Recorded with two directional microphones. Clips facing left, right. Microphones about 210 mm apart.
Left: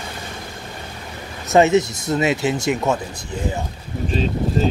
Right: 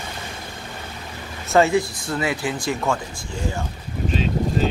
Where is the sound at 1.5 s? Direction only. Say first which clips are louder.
Left 3 dB; 20° left (ahead or behind).